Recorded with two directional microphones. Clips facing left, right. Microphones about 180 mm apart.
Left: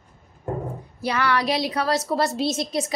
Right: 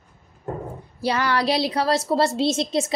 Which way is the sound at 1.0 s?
30° right (ahead or behind).